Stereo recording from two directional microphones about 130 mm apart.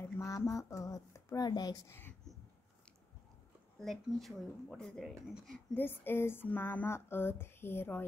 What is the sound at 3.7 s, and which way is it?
Speech, centre (ahead or behind).